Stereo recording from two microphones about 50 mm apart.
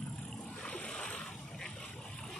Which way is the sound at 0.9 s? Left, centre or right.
Left.